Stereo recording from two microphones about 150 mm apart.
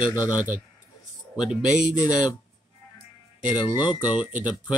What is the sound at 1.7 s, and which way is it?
Speech, 60° right (ahead or behind).